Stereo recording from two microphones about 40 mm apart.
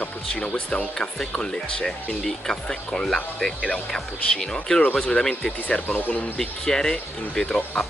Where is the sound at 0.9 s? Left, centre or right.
Centre.